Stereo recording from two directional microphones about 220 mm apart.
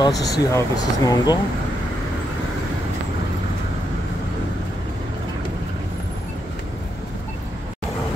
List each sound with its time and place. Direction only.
0.0 s speech: 15° left (ahead or behind)